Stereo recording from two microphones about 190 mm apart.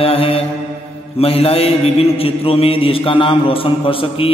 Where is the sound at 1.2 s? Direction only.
30° left (ahead or behind).